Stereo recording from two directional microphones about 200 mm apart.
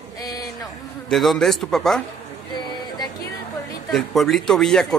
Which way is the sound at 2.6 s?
20° left (ahead or behind).